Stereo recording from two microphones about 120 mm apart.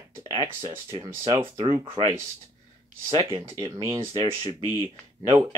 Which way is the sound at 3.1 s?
45° right (ahead or behind).